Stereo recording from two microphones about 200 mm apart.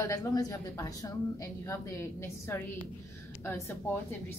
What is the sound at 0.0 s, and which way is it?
A woman's voice, 15° left (ahead or behind).